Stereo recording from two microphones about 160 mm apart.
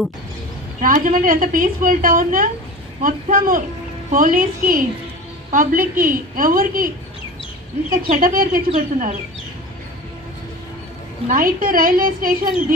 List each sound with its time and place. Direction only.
0.7 s a woman's voice: 55° right (ahead or behind)
7.9 s a woman's voice: 60° right (ahead or behind)
11.2 s a woman's voice: 60° right (ahead or behind)